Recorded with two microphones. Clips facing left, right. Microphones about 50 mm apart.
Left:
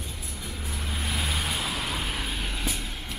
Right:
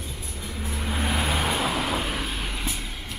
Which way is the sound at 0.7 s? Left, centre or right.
Centre.